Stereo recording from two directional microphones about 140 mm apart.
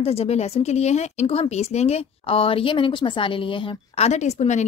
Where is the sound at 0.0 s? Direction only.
45° left (ahead or behind).